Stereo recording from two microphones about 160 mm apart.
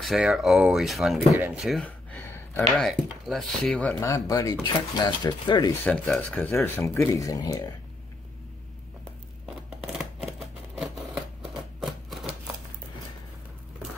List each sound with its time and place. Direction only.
0.0 s speech: centre (ahead or behind)
1.4 s a sound: 5° right (ahead or behind); by 2.6 s 15° left (ahead or behind)
2.8 s speech: centre (ahead or behind)
4.0 s speech: 20° left (ahead or behind)
5.9 s speech: 10° left (ahead or behind)
9.8 s a sound: 5° right (ahead or behind)
11.8 s typewriter: centre (ahead or behind)